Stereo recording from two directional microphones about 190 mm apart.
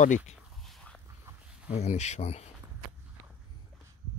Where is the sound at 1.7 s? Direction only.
40° left (ahead or behind).